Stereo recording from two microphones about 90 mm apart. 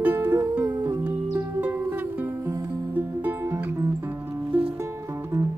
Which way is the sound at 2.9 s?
20° right (ahead or behind).